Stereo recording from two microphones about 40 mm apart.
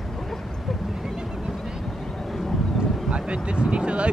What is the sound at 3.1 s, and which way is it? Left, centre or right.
Vehicle, right.